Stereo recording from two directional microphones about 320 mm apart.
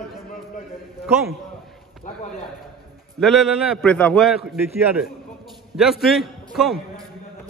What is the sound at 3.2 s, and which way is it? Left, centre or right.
A man's voice, centre.